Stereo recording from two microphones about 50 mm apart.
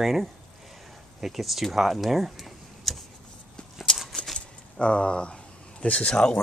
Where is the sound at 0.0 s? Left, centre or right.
Centre.